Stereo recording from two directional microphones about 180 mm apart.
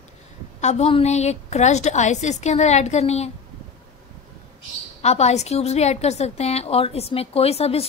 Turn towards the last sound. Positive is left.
turn(degrees=35)  # may be behind; listen again after turning